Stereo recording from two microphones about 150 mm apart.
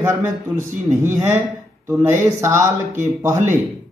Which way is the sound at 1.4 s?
15° right (ahead or behind).